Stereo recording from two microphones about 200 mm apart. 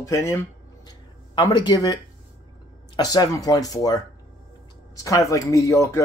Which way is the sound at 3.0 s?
20° left (ahead or behind).